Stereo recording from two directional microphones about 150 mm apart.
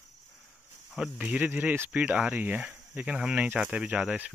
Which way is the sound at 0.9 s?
5° right (ahead or behind).